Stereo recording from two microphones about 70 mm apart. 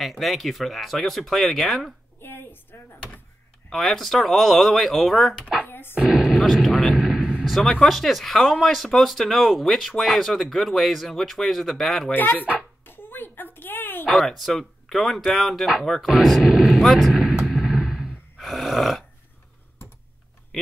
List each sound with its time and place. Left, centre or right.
0.0 s speech: centre
2.1 s a sound: left
3.7 s speech: centre
5.7 s a sound: left
5.9 s artillery fire: centre
7.4 s speech: centre
12.1 s speech: left
12.8 s a sound: left
14.0 s speech: centre
18.4 s snoring: centre